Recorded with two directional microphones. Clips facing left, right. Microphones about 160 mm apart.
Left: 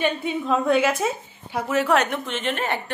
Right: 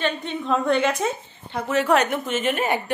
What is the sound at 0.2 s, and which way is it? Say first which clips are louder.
A woman's voice: left 1 dB; 5° left (ahead or behind).